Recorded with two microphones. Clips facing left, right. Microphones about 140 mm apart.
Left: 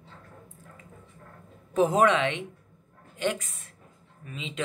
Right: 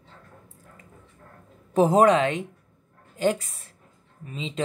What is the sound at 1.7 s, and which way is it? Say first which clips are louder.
Speech: right 4 dB; 35° right (ahead or behind).